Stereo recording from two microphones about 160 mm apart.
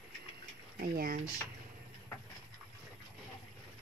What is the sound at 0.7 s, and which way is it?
Speech, 70° right (ahead or behind).